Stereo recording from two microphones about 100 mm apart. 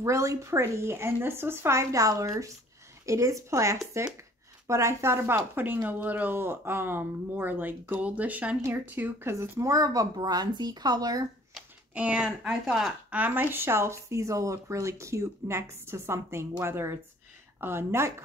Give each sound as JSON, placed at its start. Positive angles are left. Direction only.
{"t": 0.0, "sound": "speech", "side_deg": -30}
{"t": 11.9, "sound": "speech", "side_deg": -15}
{"t": 13.2, "sound": "speech", "side_deg": -20}